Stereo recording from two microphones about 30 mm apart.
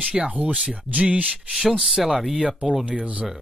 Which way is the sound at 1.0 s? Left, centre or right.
Right.